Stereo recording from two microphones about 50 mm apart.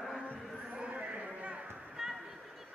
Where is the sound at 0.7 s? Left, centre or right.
Right.